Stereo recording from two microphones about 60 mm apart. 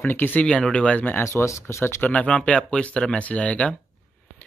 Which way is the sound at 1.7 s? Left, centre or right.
Left.